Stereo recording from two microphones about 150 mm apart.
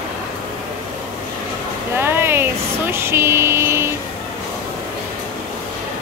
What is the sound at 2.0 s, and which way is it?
Speech, 15° right (ahead or behind).